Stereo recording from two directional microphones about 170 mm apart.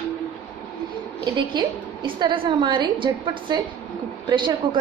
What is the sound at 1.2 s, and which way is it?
A woman's voice, 25° right (ahead or behind).